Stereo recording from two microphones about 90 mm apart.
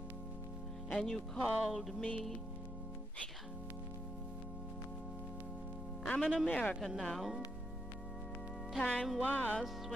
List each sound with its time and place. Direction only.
0.9 s speech: 5° left (ahead or behind)
6.0 s speech: 10° left (ahead or behind)
7.0 s speech: centre (ahead or behind)
8.7 s speech: 10° left (ahead or behind)